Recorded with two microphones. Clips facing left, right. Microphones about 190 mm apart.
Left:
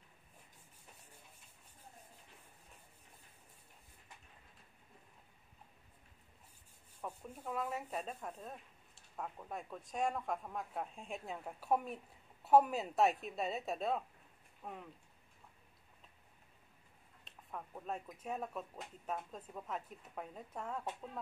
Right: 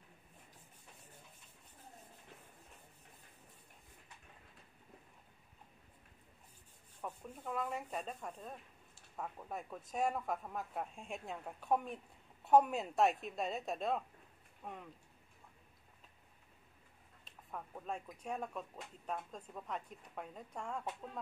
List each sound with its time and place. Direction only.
7.0 s a man's voice: 10° left (ahead or behind)
17.2 s a man's voice: centre (ahead or behind)